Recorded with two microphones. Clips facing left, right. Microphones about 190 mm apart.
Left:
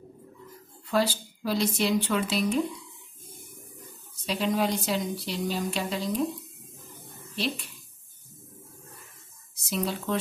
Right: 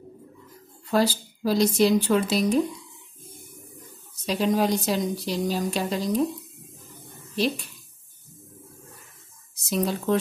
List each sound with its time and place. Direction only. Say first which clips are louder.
0.8 s a woman's voice: right 3 dB; 40° right (ahead or behind)
4.3 s a woman's voice: right 4 dB; 40° right (ahead or behind)
7.3 s speech: right 6 dB; 45° right (ahead or behind)
9.7 s speech: right 5 dB; 45° right (ahead or behind)